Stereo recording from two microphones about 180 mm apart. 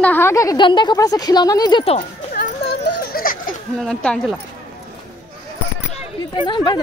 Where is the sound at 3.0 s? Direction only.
55° left (ahead or behind).